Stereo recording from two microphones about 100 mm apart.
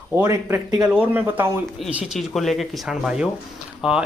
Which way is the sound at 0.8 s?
10° right (ahead or behind).